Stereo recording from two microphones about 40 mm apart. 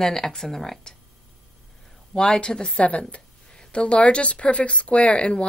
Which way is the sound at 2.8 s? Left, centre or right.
Left.